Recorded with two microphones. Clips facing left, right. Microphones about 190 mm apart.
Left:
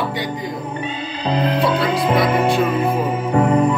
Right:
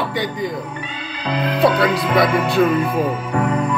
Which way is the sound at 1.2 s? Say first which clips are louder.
Left 2 dB; 30° left (ahead or behind).